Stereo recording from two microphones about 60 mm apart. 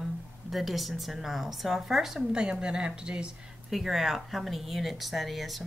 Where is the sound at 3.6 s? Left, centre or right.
Centre.